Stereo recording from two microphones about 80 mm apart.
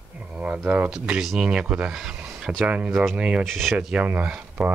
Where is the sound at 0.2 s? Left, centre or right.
Centre.